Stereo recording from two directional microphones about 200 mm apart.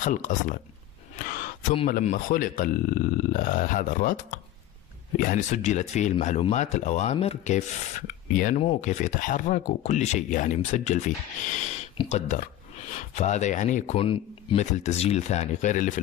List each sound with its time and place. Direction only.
0.0 s speech: 40° left (ahead or behind)
1.9 s speech: 40° left (ahead or behind)